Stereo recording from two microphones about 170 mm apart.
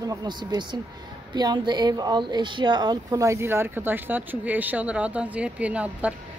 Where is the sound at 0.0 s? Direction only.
20° right (ahead or behind).